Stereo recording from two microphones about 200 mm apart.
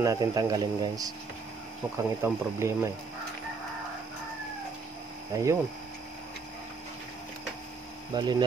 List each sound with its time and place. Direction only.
0.0 s speech: 20° right (ahead or behind)
2.2 s speech: 15° right (ahead or behind)
5.3 s speech: 15° right (ahead or behind)
8.1 s speech: 20° right (ahead or behind)